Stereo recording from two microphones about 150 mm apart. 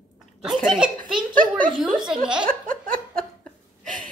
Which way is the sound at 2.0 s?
5° right (ahead or behind).